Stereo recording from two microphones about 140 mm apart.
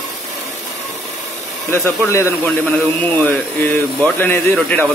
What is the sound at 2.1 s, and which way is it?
Speech, 20° left (ahead or behind).